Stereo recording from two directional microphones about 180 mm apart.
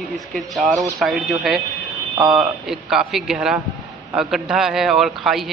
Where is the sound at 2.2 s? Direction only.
20° right (ahead or behind).